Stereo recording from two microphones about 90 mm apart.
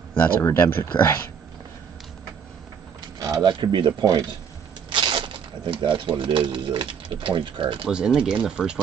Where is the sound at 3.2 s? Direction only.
50° right (ahead or behind); by 7.8 s 65° right (ahead or behind).